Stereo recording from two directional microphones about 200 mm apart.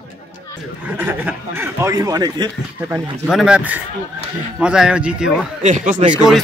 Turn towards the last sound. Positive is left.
turn(degrees=0)  # may be behind; listen again after turning